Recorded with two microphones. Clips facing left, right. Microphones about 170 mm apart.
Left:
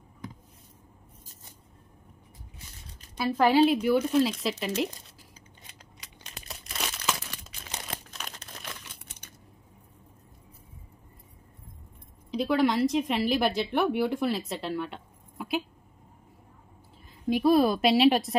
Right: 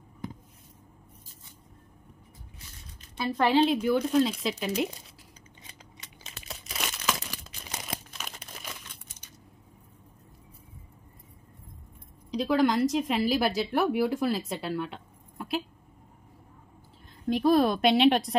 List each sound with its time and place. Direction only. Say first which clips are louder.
3.2 s a woman's voice: left 2 dB; 5° left (ahead or behind)
5.9 s crumpling: left 2 dB; centre (ahead or behind)
9.0 s typing: left 3 dB; 65° left (ahead or behind)
12.3 s a woman's voice: even; centre (ahead or behind)
17.3 s a woman's voice: left 1 dB; 5° left (ahead or behind)